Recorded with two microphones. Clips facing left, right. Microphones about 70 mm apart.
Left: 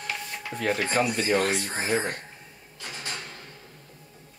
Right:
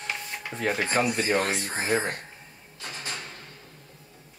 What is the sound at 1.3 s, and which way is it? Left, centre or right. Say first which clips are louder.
Speech: left 1 dB; centre.